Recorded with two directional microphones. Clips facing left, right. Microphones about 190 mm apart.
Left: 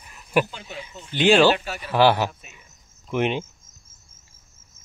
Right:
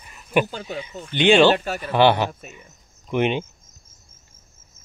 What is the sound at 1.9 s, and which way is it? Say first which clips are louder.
Speech: right 1 dB; 5° left (ahead or behind).